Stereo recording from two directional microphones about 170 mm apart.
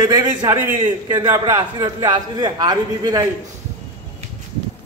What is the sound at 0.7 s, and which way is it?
A man's voice, 30° right (ahead or behind).